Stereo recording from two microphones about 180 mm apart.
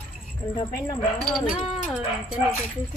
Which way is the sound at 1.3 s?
5° right (ahead or behind).